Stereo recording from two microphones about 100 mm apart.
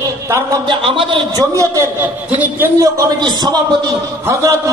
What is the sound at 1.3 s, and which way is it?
Speech, 35° right (ahead or behind).